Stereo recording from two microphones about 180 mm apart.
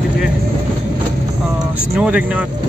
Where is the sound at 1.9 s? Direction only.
5° right (ahead or behind).